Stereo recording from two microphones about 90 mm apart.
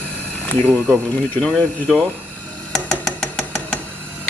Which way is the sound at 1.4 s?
15° left (ahead or behind).